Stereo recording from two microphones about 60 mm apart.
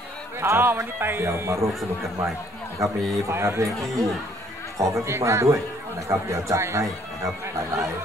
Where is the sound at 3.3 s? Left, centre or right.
Right.